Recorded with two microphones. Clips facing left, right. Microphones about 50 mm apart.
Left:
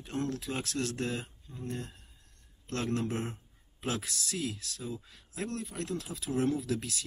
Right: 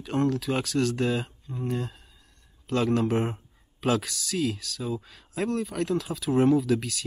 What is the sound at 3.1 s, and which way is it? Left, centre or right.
Speech, right.